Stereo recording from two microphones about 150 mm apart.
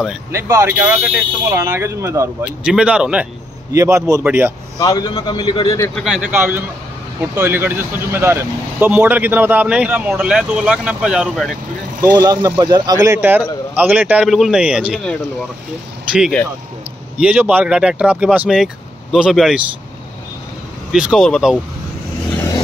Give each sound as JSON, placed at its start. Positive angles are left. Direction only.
{"t": 0.3, "sound": "speech", "side_deg": -20}
{"t": 2.4, "sound": "speech", "side_deg": -5}
{"t": 3.7, "sound": "speech", "side_deg": -20}
{"t": 4.7, "sound": "a man's voice", "side_deg": 25}
{"t": 5.9, "sound": "speech", "side_deg": -5}
{"t": 12.0, "sound": "speech", "side_deg": -25}
{"t": 16.1, "sound": "speech", "side_deg": -5}
{"t": 20.9, "sound": "speech", "side_deg": -5}